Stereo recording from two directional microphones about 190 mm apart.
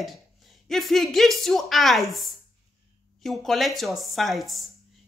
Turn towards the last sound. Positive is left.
turn(degrees=0)  # may be behind; listen again after turning